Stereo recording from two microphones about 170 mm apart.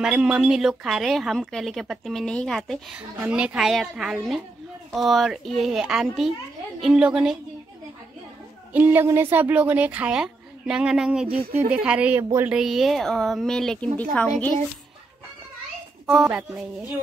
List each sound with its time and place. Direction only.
0.0 s speech: 5° right (ahead or behind)
8.7 s speech: 10° right (ahead or behind)
12.5 s speech: centre (ahead or behind)
16.1 s speech: 5° right (ahead or behind)